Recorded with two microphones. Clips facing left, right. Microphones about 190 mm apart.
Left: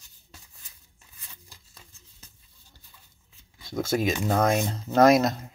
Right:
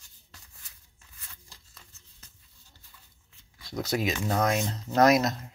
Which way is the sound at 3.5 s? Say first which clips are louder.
Left 4 dB; 25° left (ahead or behind).